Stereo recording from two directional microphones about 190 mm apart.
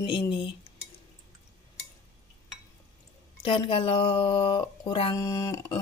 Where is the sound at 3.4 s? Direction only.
30° left (ahead or behind).